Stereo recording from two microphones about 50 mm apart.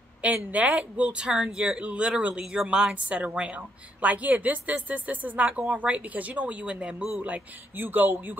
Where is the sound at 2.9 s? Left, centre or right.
Right.